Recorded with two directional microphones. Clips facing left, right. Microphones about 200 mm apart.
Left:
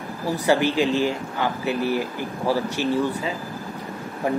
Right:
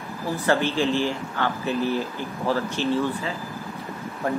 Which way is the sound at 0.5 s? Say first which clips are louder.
Left 2 dB; 15° left (ahead or behind).